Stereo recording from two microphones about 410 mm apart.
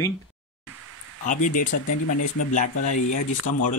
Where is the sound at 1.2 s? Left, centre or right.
Centre.